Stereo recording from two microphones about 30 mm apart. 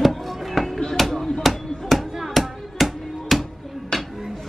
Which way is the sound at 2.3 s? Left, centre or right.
Centre.